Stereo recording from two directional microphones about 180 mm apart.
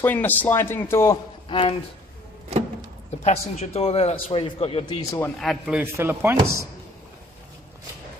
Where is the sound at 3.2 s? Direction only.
35° left (ahead or behind).